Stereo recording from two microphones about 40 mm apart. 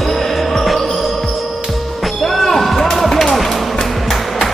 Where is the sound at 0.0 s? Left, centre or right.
Centre.